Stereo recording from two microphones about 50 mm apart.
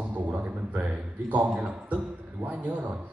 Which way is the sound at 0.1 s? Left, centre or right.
Right.